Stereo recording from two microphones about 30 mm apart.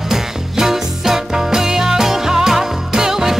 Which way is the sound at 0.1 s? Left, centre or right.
Centre.